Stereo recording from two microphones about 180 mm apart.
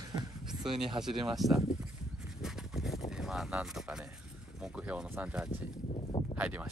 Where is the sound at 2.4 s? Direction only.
Centre (ahead or behind).